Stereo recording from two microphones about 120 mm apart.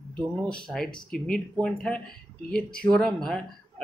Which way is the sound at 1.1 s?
5° left (ahead or behind).